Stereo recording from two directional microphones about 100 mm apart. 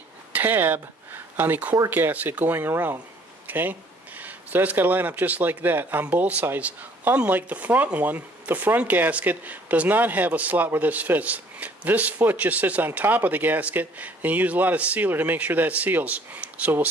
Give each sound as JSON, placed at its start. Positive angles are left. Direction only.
{"t": 0.3, "sound": "speech", "side_deg": -20}